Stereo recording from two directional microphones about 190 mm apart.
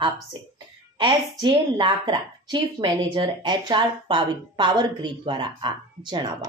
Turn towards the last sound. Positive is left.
turn(degrees=-25)  # may be behind; listen again after turning